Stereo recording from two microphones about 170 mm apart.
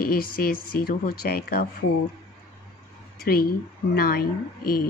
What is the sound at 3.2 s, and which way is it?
Speech, 60° left (ahead or behind).